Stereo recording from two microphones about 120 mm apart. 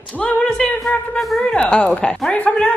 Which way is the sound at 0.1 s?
10° left (ahead or behind).